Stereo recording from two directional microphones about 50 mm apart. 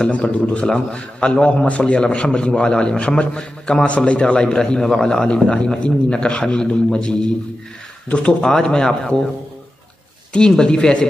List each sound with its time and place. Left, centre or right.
0.0 s a man's voice: left
8.4 s speech: centre
10.5 s speech: centre